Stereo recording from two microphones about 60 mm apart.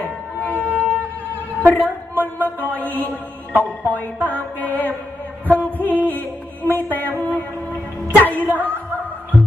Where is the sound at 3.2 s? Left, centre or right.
Left.